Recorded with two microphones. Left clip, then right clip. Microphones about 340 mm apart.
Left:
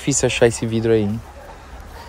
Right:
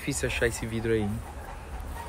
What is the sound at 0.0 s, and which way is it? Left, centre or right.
Speech, centre.